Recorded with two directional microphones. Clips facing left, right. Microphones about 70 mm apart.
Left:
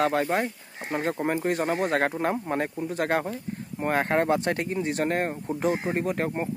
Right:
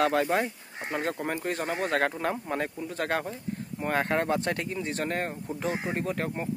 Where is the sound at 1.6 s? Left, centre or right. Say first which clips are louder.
Left 4 dB; left.